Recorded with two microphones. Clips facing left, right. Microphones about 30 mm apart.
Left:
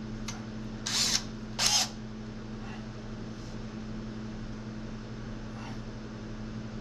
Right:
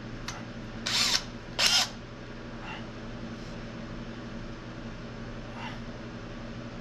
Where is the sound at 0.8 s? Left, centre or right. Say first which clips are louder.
Right 3 dB; right.